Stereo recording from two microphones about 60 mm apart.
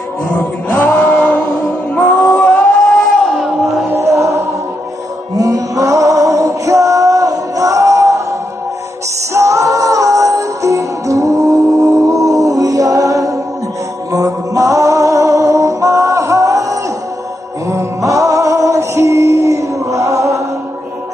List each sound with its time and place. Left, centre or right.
0.7 s music: left
2.0 s music: centre
2.3 s howl: left
3.9 s chant: right
5.3 s music: right